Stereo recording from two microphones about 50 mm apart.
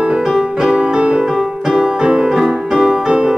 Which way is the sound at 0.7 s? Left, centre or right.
Right.